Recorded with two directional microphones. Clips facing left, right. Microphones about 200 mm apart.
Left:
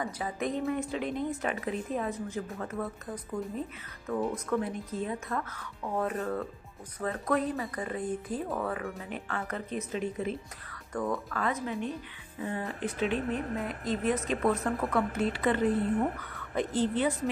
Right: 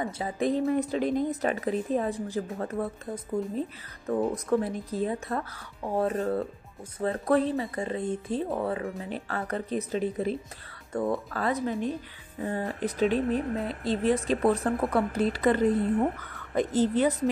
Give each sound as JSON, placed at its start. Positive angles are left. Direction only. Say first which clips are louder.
{"t": 0.0, "sound": "speech", "louder": "right 4 dB", "side_deg": -30}
{"t": 4.1, "sound": "speech", "louder": "right 4 dB", "side_deg": -35}